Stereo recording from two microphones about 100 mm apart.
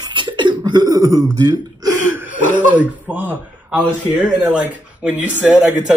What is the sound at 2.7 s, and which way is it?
Speech, 15° right (ahead or behind).